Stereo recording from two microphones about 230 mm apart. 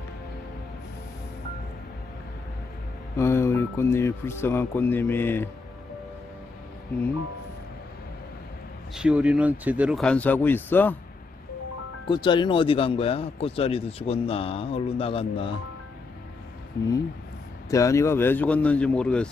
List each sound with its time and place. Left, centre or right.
3.2 s a man's voice: centre
8.9 s speech: centre
12.1 s speech: centre
16.8 s speech: left
17.6 s a man's voice: centre